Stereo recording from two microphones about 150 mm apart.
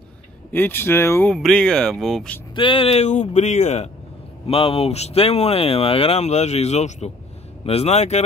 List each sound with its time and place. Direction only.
0.5 s speech: 15° left (ahead or behind)
1.3 s speech: 5° left (ahead or behind)
2.5 s speech: 35° left (ahead or behind)